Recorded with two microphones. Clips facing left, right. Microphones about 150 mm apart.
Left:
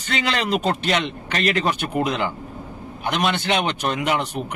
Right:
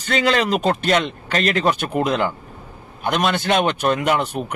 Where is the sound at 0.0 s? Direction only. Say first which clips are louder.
Right 5 dB; 40° right (ahead or behind).